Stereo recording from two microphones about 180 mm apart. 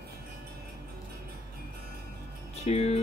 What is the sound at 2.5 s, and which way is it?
Music, 35° left (ahead or behind).